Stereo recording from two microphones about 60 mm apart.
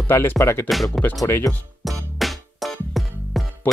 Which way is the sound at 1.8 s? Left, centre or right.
Centre.